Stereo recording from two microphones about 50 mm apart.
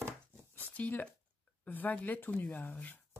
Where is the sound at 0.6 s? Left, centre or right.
Left.